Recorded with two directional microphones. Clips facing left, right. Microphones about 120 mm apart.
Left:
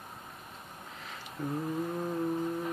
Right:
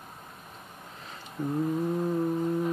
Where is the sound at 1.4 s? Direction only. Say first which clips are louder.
Right 4 dB; 20° right (ahead or behind).